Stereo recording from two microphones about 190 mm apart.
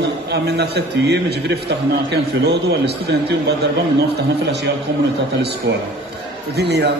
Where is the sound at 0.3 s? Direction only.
60° right (ahead or behind).